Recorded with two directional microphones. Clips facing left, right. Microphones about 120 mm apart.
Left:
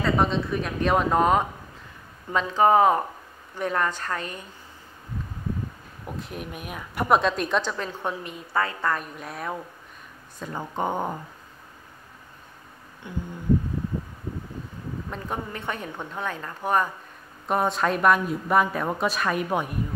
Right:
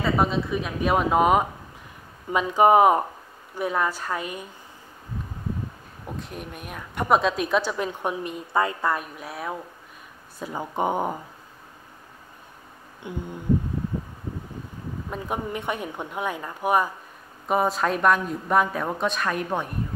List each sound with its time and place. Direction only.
0.0 s a woman's voice: 5° right (ahead or behind)
6.1 s a woman's voice: centre (ahead or behind)
13.0 s a sound: 20° right (ahead or behind)
15.0 s a woman's voice: 10° right (ahead or behind); by 19.7 s 5° left (ahead or behind)